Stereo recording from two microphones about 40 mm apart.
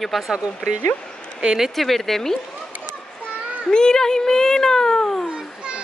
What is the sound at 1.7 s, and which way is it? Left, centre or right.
Speech, centre.